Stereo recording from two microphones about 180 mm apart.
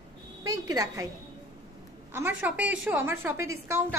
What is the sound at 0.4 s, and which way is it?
Speech, 20° right (ahead or behind).